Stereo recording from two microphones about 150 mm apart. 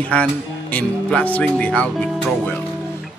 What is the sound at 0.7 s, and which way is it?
Speech, 10° left (ahead or behind).